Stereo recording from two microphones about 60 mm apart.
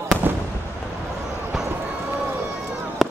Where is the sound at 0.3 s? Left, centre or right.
Right.